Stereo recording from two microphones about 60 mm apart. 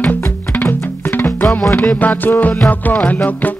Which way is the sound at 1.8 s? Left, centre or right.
Left.